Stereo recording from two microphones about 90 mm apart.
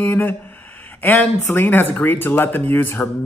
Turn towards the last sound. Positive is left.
turn(degrees=25)  # may be behind; listen again after turning